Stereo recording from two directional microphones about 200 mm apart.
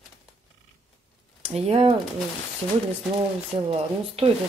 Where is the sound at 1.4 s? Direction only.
30° right (ahead or behind).